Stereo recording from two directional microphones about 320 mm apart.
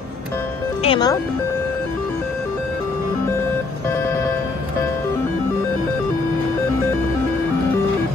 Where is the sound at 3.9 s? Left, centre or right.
Centre.